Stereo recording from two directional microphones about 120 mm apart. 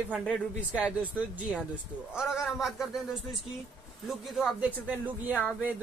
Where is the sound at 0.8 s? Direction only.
10° right (ahead or behind).